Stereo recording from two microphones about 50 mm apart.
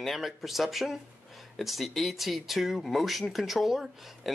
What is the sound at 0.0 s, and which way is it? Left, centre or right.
Speech, centre.